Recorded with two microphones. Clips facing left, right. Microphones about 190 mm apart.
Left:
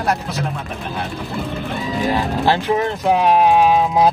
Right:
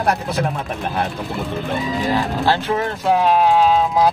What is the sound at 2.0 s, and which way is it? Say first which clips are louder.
Speech: left 2 dB; 15° left (ahead or behind).